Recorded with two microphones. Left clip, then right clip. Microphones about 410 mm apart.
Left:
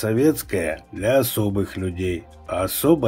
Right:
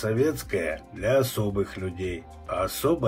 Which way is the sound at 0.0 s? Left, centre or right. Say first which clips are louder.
Left 5 dB; left.